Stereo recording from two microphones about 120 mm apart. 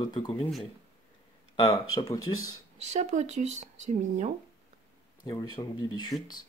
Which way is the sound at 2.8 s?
70° right (ahead or behind).